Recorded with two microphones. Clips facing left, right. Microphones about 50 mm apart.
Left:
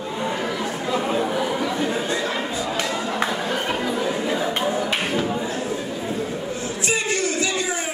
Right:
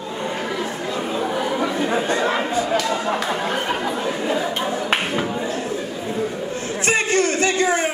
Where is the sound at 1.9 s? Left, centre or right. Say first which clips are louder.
Right 3 dB; right.